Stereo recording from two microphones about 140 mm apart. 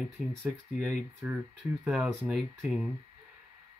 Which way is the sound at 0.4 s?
20° right (ahead or behind).